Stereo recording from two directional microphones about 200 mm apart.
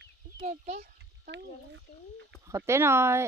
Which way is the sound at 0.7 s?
50° right (ahead or behind).